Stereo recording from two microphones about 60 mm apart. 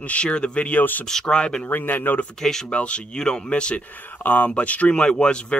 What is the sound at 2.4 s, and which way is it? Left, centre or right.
Speech, centre.